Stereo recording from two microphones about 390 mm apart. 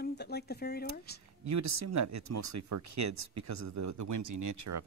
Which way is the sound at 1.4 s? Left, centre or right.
Right.